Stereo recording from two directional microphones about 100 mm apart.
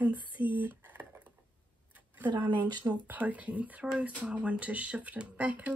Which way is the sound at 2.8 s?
15° right (ahead or behind).